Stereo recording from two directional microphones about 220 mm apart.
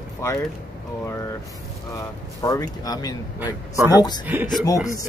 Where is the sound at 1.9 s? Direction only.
15° left (ahead or behind).